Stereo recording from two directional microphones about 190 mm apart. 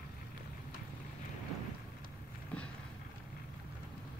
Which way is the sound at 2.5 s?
5° left (ahead or behind).